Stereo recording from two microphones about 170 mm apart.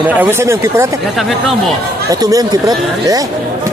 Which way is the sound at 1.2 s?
Centre (ahead or behind).